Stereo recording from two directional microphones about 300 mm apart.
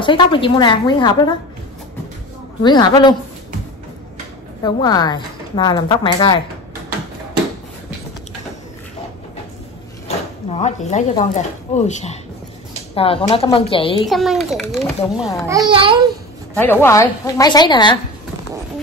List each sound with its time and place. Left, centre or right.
0.0 s a woman's voice: centre
2.6 s a woman's voice: centre
4.6 s a woman's voice: centre
10.0 s a sound: left
11.3 s a woman's voice: left
14.0 s a child's voice: centre
15.4 s a child's voice: centre
16.5 s a woman's voice: centre